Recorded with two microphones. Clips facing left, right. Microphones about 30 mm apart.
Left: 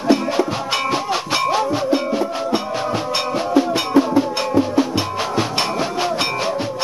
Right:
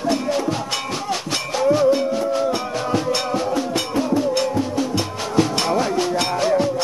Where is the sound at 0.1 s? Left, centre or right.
Centre.